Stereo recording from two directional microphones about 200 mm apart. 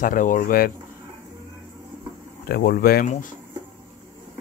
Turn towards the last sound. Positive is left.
turn(degrees=45)  # may be behind; listen again after turning